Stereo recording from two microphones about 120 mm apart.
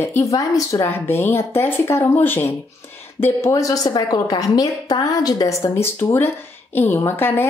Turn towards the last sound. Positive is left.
turn(degrees=20)  # may be behind; listen again after turning